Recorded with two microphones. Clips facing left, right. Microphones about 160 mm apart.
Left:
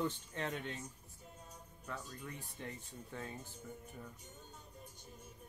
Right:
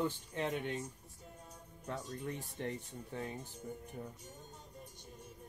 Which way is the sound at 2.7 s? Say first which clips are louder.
Right 6 dB; 20° right (ahead or behind).